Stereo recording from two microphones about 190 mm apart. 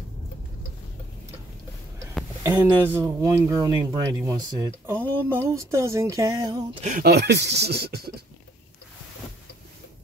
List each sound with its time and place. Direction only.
2.4 s speech: 15° right (ahead or behind)
6.8 s speech: 40° right (ahead or behind)
7.1 s speech: 60° right (ahead or behind)